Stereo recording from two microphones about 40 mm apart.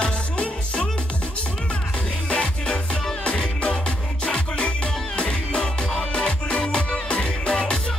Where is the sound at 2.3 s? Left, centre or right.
Left.